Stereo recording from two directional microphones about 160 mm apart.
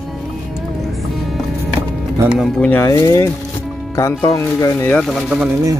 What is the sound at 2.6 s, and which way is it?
Speech, 15° left (ahead or behind).